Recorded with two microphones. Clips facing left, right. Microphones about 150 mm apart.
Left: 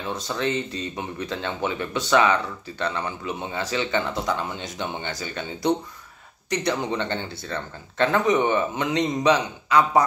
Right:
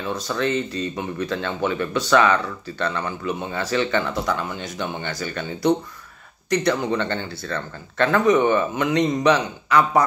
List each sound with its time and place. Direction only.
0.1 s speech: 20° left (ahead or behind)